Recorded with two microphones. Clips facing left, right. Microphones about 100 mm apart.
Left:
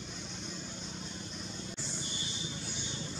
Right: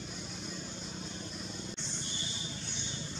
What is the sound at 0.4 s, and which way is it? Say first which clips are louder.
Vehicle: right 1 dB; centre (ahead or behind).